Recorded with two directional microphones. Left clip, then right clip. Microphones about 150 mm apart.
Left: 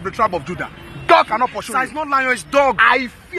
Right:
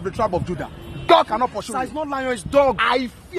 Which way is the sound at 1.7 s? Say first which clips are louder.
Left 7 dB; 30° right (ahead or behind).